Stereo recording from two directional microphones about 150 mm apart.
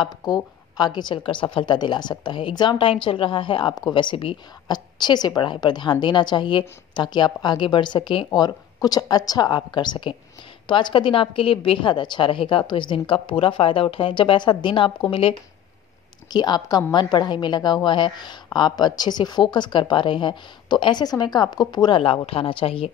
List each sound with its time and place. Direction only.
0.0 s a woman's voice: 30° left (ahead or behind)